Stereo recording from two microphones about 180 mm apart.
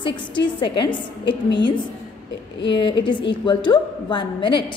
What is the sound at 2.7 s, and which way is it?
A woman's voice, 25° left (ahead or behind).